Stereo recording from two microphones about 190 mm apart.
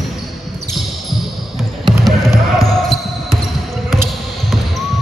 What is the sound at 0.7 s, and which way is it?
Basketball bounce, centre (ahead or behind).